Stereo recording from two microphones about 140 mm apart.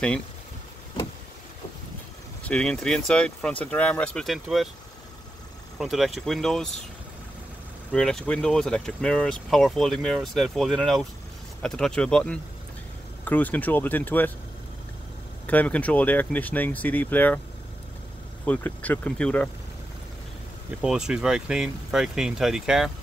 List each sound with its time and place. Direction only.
2.4 s speech: 5° left (ahead or behind)
5.8 s speech: centre (ahead or behind)
7.9 s speech: 5° left (ahead or behind)
15.4 s speech: 10° left (ahead or behind)
18.4 s speech: 10° left (ahead or behind)
20.8 s speech: 5° right (ahead or behind)